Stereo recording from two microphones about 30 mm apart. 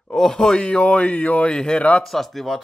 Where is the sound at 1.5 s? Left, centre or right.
Left.